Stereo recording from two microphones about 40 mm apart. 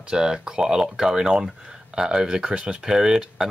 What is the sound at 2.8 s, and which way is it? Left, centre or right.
Speech, centre.